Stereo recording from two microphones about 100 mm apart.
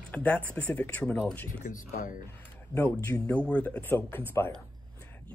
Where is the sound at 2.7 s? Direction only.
25° left (ahead or behind).